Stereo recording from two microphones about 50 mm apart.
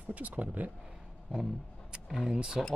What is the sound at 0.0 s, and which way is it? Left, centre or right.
Speech, right.